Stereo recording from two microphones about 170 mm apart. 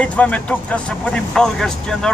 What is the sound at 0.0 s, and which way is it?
Speech, 5° left (ahead or behind).